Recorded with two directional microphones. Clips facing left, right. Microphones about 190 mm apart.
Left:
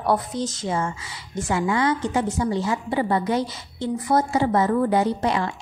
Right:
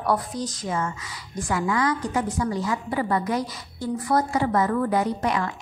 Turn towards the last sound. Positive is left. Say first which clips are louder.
# left 2 dB
turn(degrees=30)  # may be behind; listen again after turning